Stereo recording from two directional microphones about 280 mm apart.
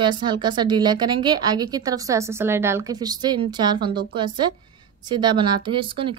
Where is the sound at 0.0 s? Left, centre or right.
Centre.